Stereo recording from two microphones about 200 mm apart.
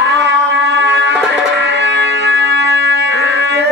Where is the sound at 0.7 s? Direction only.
60° right (ahead or behind).